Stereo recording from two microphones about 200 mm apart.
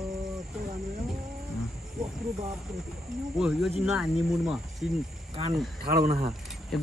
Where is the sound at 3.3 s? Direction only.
5° right (ahead or behind).